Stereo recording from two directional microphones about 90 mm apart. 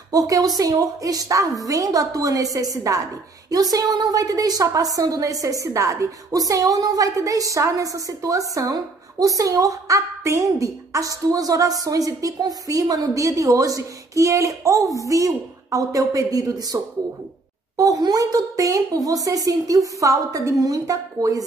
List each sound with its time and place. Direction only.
0.1 s a woman's voice: 40° right (ahead or behind)